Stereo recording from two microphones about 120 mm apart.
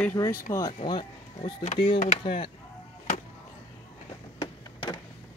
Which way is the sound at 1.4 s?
55° left (ahead or behind).